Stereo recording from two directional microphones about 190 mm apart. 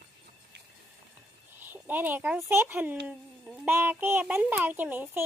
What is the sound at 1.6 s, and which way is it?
A child's voice, 10° right (ahead or behind).